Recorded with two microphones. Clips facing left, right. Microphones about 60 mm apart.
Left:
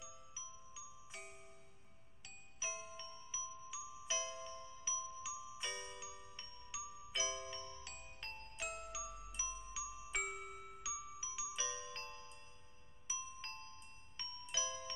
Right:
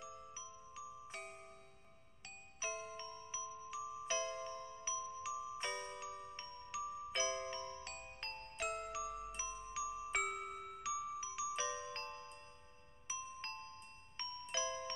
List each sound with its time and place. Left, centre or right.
0.0 s glockenspiel: right
2.6 s music: right
3.4 s glockenspiel: right